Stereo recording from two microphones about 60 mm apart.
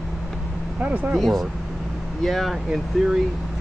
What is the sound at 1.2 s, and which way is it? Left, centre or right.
Speech, centre.